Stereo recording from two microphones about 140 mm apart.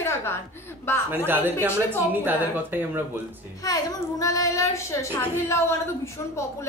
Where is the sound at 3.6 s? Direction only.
25° left (ahead or behind).